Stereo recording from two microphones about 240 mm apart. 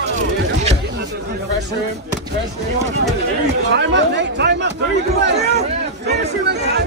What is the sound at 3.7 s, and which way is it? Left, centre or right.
Speech, right.